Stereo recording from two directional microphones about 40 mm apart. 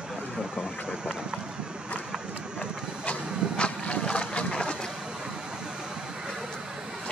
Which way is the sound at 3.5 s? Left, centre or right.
Left.